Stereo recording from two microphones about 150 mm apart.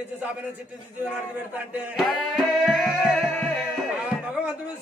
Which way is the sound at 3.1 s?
10° left (ahead or behind).